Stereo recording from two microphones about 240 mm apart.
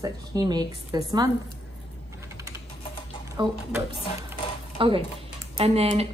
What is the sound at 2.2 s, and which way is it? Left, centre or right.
Typing, centre.